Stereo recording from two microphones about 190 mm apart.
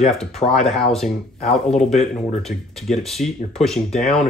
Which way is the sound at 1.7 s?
35° left (ahead or behind).